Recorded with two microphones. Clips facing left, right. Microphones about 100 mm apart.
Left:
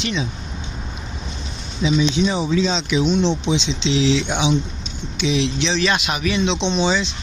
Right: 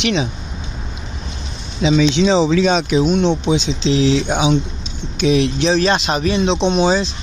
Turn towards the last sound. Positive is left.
turn(degrees=-45)  # may be behind; listen again after turning